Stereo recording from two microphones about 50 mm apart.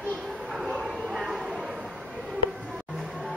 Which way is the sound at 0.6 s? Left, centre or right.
Centre.